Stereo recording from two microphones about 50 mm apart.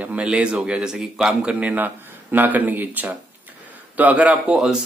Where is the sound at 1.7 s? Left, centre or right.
Right.